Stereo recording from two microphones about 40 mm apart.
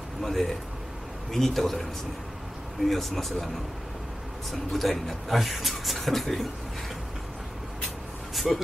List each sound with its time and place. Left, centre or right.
0.2 s a man's voice: centre
2.9 s speech: centre
4.5 s speech: centre
8.4 s speech: centre